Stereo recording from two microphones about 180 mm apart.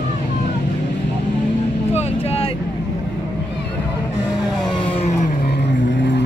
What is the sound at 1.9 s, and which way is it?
Vehicle, 35° left (ahead or behind).